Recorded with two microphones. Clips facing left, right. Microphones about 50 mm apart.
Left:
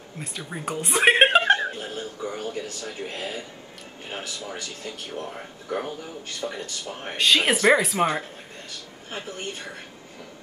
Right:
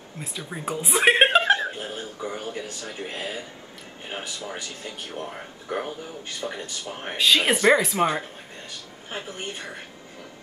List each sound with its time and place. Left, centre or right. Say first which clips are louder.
0.2 s a woman's voice: even; centre
1.8 s speech: even; right
7.2 s speech: even; centre
9.1 s speech: even; right